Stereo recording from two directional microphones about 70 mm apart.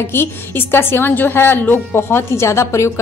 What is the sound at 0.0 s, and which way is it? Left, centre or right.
A woman's voice, left.